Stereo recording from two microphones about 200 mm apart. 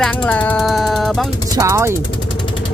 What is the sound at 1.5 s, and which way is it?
Speech, 15° right (ahead or behind).